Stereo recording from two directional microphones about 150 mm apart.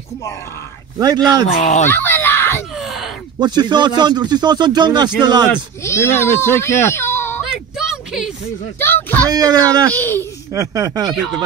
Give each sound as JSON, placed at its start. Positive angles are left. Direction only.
{"t": 0.9, "sound": "speech", "side_deg": -25}
{"t": 1.6, "sound": "speech", "side_deg": 50}
{"t": 1.9, "sound": "screaming", "side_deg": 15}
{"t": 2.8, "sound": "a sound", "side_deg": 0}
{"t": 3.3, "sound": "speech", "side_deg": -30}
{"t": 5.9, "sound": "speech", "side_deg": 15}
{"t": 7.5, "sound": "a sound", "side_deg": -5}
{"t": 8.7, "sound": "speech", "side_deg": 15}
{"t": 9.3, "sound": "speech", "side_deg": -25}
{"t": 9.9, "sound": "speech", "side_deg": 15}
{"t": 10.5, "sound": "speech", "side_deg": -20}